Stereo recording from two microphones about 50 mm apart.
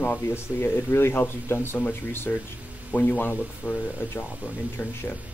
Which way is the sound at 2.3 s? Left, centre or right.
Left.